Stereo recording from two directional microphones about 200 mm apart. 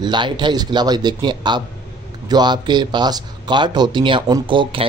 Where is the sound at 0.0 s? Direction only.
20° right (ahead or behind).